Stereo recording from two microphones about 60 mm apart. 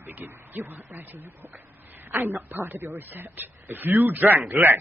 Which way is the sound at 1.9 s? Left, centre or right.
Right.